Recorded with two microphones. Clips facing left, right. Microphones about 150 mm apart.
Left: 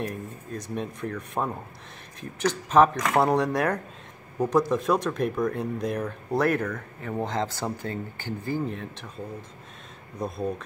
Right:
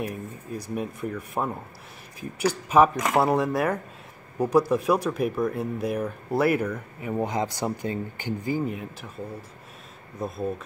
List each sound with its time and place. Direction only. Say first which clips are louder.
0.0 s speech: right 1 dB; 5° right (ahead or behind)
10.1 s speech: even; 5° right (ahead or behind)